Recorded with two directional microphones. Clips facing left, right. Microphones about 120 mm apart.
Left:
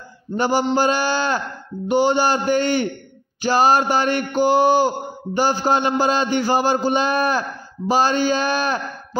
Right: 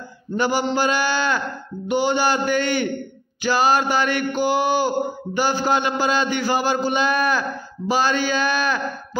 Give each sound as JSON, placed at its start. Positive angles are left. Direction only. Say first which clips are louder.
{"t": 0.4, "sound": "mantra", "louder": "left 2 dB", "side_deg": 35}